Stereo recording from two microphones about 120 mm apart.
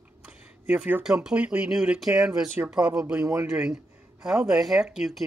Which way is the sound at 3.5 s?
5° right (ahead or behind).